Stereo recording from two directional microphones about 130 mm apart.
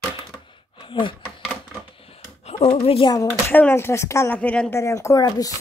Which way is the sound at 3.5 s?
15° left (ahead or behind).